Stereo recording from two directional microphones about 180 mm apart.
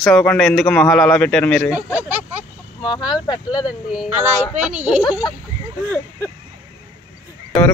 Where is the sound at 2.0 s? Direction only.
10° right (ahead or behind).